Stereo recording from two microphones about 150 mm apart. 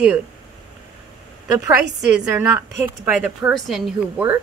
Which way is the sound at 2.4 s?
15° right (ahead or behind).